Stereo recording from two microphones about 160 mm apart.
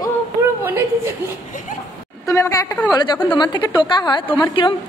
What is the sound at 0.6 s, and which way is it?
Speech, 15° right (ahead or behind).